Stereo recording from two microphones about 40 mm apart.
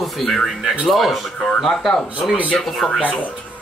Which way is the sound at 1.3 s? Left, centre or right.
Centre.